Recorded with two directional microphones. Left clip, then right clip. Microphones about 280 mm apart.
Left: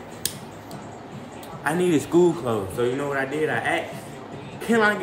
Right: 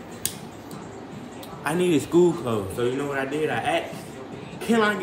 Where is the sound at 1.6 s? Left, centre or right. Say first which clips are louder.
Left 1 dB; centre.